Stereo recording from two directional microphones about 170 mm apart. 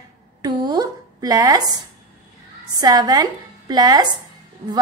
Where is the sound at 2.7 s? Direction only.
20° right (ahead or behind).